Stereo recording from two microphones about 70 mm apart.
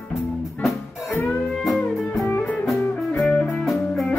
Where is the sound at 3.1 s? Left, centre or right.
Left.